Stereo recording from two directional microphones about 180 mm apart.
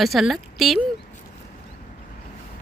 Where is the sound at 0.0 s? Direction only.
Centre (ahead or behind).